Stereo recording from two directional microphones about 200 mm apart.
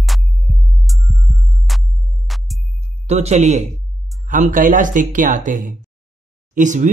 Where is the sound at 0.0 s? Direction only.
Centre (ahead or behind).